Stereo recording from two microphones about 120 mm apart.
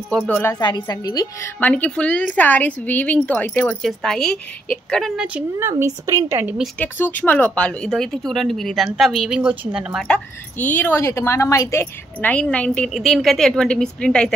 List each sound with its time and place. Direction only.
0.3 s a woman's voice: 20° left (ahead or behind)
0.6 s a woman's voice: 35° left (ahead or behind)
1.6 s a woman's voice: 10° left (ahead or behind)
3.8 s speech: 5° left (ahead or behind)
5.1 s speech: 10° right (ahead or behind)
5.6 s a woman's voice: 20° right (ahead or behind)
6.8 s speech: 15° left (ahead or behind); by 10.0 s 5° right (ahead or behind)
10.0 s a woman's voice: 10° left (ahead or behind)